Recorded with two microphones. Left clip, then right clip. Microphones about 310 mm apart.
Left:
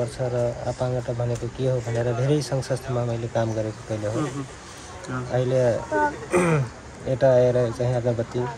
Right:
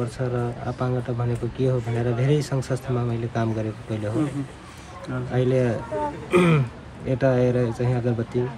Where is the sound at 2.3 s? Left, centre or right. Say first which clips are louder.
Even; centre.